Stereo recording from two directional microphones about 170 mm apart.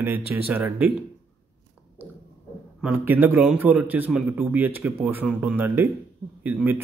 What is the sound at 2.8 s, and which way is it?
A man's voice, 10° right (ahead or behind).